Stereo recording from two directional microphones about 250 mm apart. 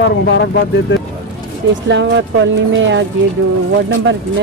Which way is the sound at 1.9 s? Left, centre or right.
Right.